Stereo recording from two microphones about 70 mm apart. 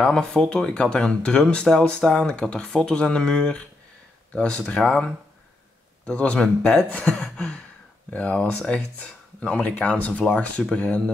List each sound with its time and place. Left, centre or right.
0.0 s speech: centre